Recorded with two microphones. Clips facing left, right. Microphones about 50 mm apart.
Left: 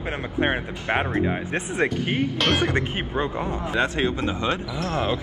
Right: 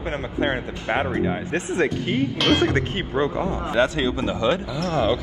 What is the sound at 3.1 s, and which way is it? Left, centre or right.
Speech, centre.